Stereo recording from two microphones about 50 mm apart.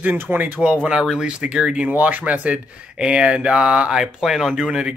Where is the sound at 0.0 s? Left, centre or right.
Right.